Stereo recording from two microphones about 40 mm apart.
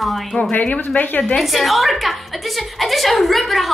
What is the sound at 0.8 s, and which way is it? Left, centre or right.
Speech, left.